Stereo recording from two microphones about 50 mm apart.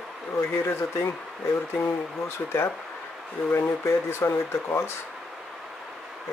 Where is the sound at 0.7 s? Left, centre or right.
Left.